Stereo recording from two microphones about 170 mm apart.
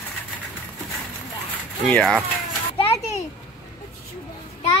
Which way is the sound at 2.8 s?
35° left (ahead or behind).